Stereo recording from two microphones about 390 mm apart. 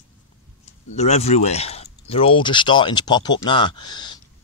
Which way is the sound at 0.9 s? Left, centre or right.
Centre.